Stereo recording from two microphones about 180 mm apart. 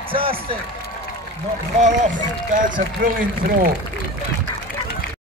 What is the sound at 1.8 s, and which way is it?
A man's voice, 40° right (ahead or behind).